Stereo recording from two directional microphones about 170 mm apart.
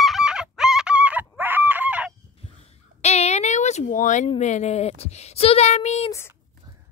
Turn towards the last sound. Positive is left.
turn(degrees=15)  # may be behind; listen again after turning